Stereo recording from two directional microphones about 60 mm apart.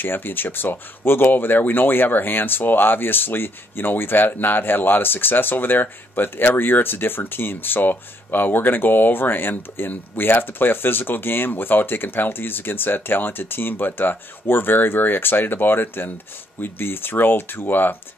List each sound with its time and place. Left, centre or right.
0.0 s speech: left